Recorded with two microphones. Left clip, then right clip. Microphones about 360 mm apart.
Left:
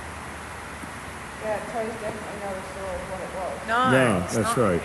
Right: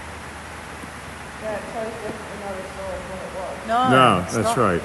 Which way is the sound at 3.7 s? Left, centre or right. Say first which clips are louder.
Right 5 dB; centre.